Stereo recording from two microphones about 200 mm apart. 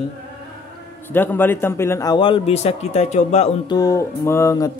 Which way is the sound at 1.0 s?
10° left (ahead or behind).